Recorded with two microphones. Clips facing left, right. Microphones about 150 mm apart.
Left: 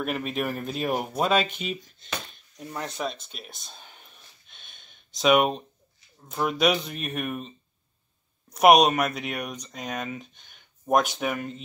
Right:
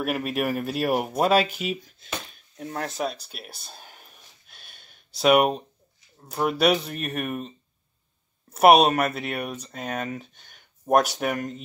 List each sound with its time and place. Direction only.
0.0 s speech: 5° right (ahead or behind)
8.5 s speech: 5° right (ahead or behind)
11.1 s speech: 40° right (ahead or behind)